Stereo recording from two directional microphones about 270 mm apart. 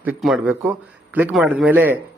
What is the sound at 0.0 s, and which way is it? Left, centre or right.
A man's voice, centre.